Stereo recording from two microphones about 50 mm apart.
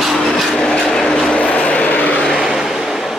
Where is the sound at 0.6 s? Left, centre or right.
Centre; by 2.2 s left.